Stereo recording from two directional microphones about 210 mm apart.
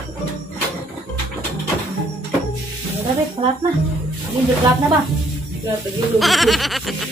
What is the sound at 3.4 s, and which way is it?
Speech, 25° right (ahead or behind).